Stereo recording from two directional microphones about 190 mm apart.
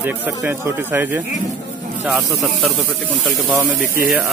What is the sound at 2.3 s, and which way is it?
Speech, centre (ahead or behind).